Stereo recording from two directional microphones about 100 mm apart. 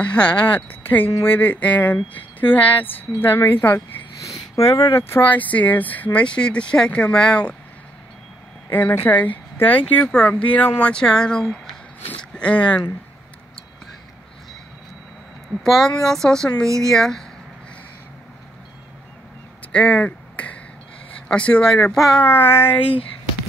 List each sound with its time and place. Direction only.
0.0 s speech: 10° left (ahead or behind)
4.2 s speech: 30° left (ahead or behind)
5.1 s speech: 20° left (ahead or behind)
8.6 s speech: 20° left (ahead or behind)
15.6 s speech: 5° left (ahead or behind)
19.7 s a sound: 10° left (ahead or behind)
21.3 s speech: 10° left (ahead or behind)
21.9 s speech: centre (ahead or behind)
22.2 s speech: 20° left (ahead or behind)